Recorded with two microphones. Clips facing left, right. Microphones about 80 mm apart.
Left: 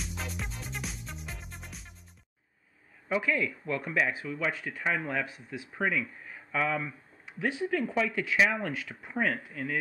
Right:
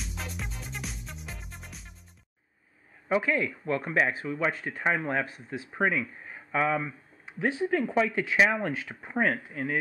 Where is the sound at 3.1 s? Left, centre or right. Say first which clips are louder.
Right 3 dB; right.